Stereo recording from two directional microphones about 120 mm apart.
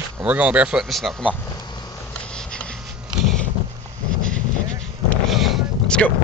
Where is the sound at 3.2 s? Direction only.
5° left (ahead or behind).